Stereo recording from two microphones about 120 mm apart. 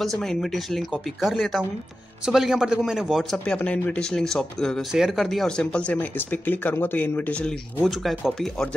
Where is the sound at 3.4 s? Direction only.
10° left (ahead or behind).